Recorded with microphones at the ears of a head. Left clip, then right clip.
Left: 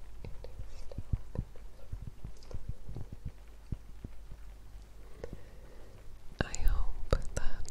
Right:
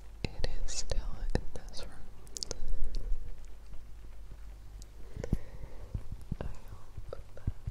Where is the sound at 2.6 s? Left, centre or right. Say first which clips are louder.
Right 1 dB; left.